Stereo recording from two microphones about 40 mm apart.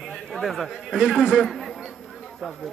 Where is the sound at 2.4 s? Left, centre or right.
Centre.